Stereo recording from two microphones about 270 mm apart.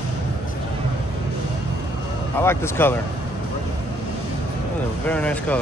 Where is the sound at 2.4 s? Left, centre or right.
Centre.